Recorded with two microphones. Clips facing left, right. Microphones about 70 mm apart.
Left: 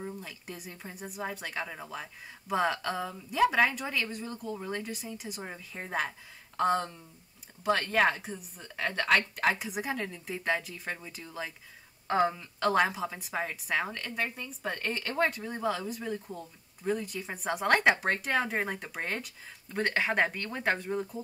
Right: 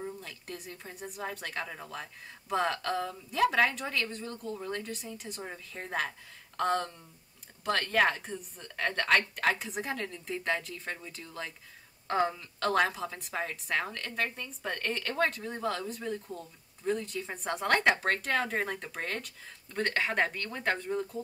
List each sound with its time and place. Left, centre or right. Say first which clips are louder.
0.0 s a woman's voice: even; centre